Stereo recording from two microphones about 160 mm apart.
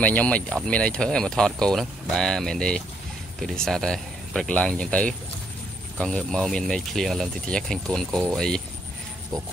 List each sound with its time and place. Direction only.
0.0 s speech: 10° left (ahead or behind)